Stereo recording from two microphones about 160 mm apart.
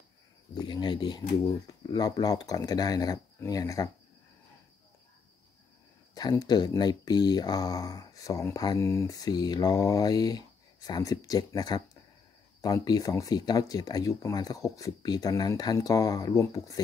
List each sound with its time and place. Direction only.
0.6 s a sound: 30° left (ahead or behind)
1.7 s speech: 25° left (ahead or behind)
6.1 s speech: 25° left (ahead or behind)